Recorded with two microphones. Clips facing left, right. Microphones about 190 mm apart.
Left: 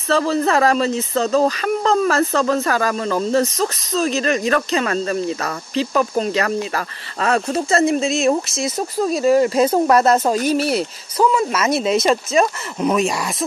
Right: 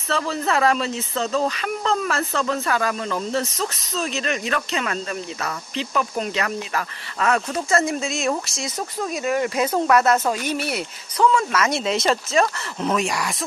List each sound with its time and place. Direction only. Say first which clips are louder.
0.1 s speech: left 6 dB; 40° left (ahead or behind)
11.3 s speech: left 3 dB; 20° left (ahead or behind)